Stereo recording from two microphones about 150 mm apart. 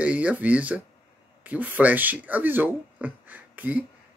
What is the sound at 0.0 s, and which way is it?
Speech, 10° right (ahead or behind).